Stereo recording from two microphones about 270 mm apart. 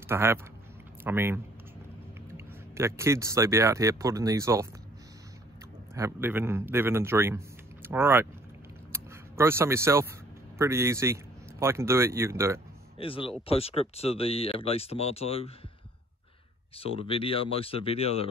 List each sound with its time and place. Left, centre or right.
0.1 s speech: centre
5.9 s speech: centre
8.9 s a sound: centre
10.6 s speech: centre
13.0 s speech: centre
16.7 s speech: left